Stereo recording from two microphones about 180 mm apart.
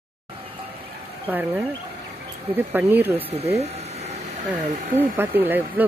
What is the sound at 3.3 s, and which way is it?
Speech, 35° right (ahead or behind).